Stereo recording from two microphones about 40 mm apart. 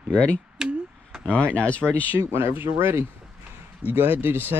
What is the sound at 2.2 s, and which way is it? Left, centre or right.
Speech, right.